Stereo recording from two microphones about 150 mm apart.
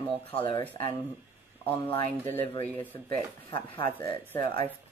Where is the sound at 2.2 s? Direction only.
15° left (ahead or behind).